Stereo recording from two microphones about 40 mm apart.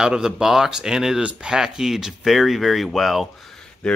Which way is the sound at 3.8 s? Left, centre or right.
Centre.